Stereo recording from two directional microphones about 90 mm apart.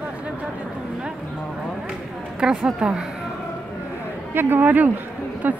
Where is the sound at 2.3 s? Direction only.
10° right (ahead or behind).